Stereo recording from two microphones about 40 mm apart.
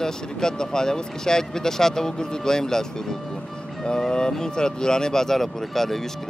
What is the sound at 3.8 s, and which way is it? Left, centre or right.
Speech, centre.